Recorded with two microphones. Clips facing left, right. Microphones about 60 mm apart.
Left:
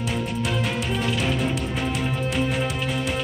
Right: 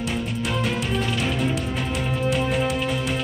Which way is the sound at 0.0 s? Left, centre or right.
Centre.